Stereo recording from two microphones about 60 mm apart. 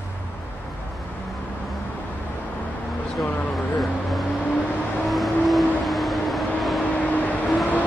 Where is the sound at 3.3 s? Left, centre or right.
Left.